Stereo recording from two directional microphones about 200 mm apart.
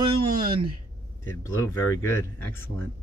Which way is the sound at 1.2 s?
15° left (ahead or behind).